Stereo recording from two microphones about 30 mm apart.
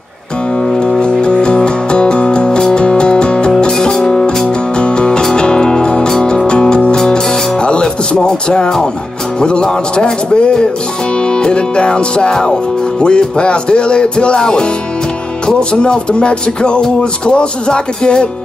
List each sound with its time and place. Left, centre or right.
0.7 s music: left
4.7 s music: left
14.4 s music: left
15.4 s music: left